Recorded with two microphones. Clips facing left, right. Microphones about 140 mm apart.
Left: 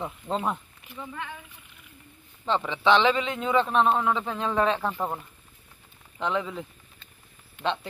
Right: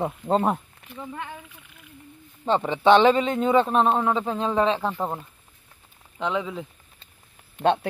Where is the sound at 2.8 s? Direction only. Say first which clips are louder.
Right 5 dB; 45° right (ahead or behind); by 6.6 s 10° right (ahead or behind).